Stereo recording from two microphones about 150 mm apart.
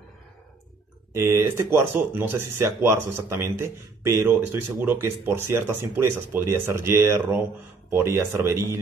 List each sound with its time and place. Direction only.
1.1 s speech: 20° right (ahead or behind)